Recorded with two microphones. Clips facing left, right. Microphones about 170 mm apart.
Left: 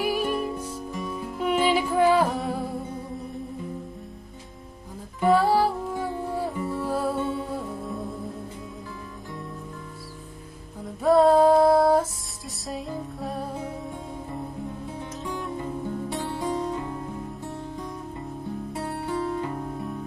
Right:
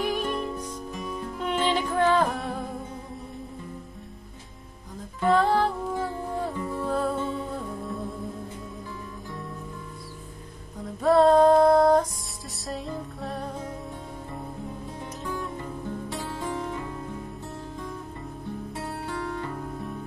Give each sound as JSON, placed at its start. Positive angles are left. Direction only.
{"t": 0.0, "sound": "music", "side_deg": 10}
{"t": 5.2, "sound": "music", "side_deg": 5}
{"t": 11.0, "sound": "music", "side_deg": 0}
{"t": 16.3, "sound": "music", "side_deg": 15}
{"t": 19.0, "sound": "music", "side_deg": 25}